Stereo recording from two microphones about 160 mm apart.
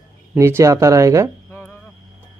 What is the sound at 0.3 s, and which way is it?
Speech, 15° right (ahead or behind).